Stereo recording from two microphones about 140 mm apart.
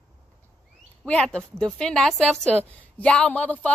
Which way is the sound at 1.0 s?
5° left (ahead or behind).